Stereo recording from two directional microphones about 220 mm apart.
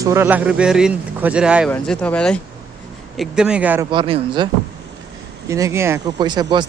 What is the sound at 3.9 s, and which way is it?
Speech, 20° right (ahead or behind).